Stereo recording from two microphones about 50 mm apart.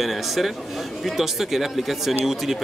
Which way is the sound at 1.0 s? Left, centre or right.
Centre.